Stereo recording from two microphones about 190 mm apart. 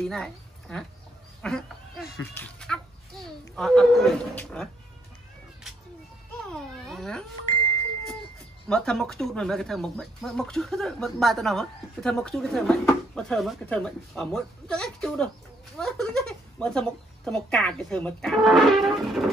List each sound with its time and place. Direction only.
0.0 s speech: 5° left (ahead or behind)
6.4 s cat: centre (ahead or behind)
8.6 s speech: 5° left (ahead or behind)